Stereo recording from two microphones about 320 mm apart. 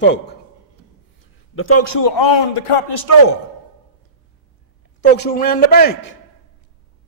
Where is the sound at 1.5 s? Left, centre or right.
Left.